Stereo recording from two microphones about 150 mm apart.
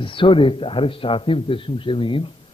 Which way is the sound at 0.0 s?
35° left (ahead or behind).